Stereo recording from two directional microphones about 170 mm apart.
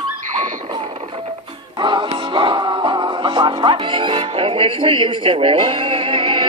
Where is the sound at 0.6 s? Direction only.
30° right (ahead or behind).